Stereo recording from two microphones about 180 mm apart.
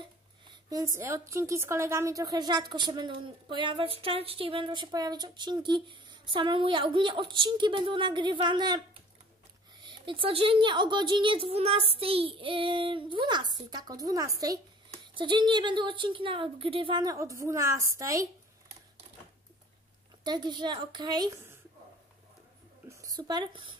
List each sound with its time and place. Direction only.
0.5 s a sound: 20° right (ahead or behind)
0.9 s speech: 15° right (ahead or behind)
20.2 s speech: 25° right (ahead or behind)
22.8 s speech: 20° right (ahead or behind)